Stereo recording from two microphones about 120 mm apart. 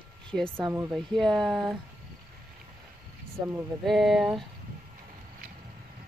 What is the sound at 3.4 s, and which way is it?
Speech, 15° right (ahead or behind).